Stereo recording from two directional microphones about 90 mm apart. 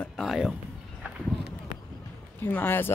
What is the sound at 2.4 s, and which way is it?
Speech, 25° left (ahead or behind).